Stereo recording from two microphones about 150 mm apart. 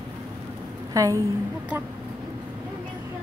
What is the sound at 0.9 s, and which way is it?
Speech, 25° right (ahead or behind).